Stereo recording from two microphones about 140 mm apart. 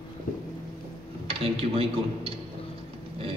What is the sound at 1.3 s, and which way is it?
A man's voice, 45° right (ahead or behind).